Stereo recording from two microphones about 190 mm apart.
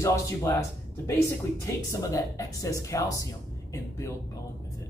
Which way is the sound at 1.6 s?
15° left (ahead or behind).